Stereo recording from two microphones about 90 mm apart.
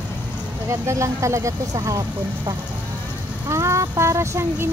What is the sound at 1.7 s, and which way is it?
Speech, 45° right (ahead or behind).